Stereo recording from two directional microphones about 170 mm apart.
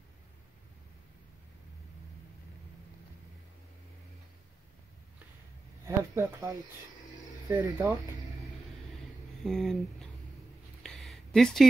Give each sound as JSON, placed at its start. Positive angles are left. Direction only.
{"t": 5.9, "sound": "speech", "side_deg": -15}
{"t": 9.4, "sound": "speech", "side_deg": 0}
{"t": 10.8, "sound": "a sound", "side_deg": 0}